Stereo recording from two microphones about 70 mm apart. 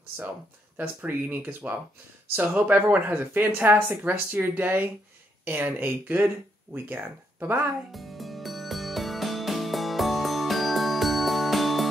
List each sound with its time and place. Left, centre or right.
0.7 s speech: right
2.5 s speech: right
7.9 s music: centre